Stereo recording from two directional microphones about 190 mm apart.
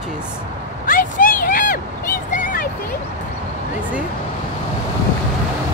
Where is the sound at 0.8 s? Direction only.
45° left (ahead or behind).